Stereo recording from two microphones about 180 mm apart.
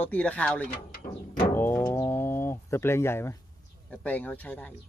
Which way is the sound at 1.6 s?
15° left (ahead or behind).